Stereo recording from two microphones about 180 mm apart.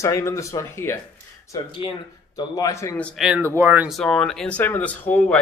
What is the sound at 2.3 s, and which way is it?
Speech, 20° left (ahead or behind).